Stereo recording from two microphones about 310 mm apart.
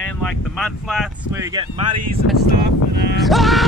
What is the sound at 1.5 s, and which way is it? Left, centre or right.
Speech, centre.